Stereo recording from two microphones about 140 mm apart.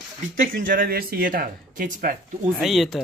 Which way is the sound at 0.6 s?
85° right.